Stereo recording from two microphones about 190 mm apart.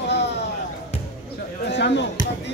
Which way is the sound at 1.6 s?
65° left (ahead or behind).